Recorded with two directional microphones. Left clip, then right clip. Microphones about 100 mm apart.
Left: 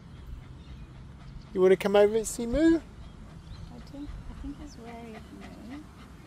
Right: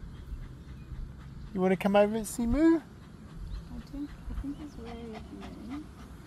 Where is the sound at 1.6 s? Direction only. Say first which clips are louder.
Left 4 dB; 90° left.